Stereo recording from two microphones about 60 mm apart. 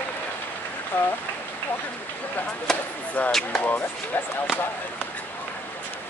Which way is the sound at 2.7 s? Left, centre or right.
Centre.